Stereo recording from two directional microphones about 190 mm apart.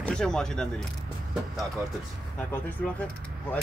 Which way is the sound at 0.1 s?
5° left (ahead or behind).